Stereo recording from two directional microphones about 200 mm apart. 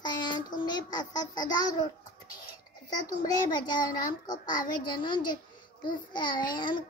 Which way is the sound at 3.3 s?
20° left (ahead or behind).